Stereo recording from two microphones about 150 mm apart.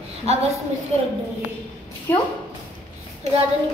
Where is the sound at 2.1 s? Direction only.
15° left (ahead or behind).